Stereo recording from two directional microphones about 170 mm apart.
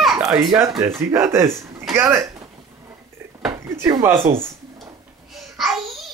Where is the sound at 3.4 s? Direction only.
20° right (ahead or behind).